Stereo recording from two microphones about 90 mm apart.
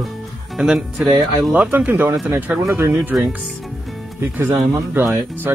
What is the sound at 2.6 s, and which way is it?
Speech, 30° right (ahead or behind).